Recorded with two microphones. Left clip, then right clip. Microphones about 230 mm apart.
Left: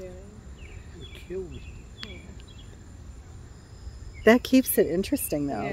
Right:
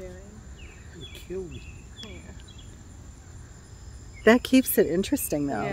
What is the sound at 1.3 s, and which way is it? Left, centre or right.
Speech, right.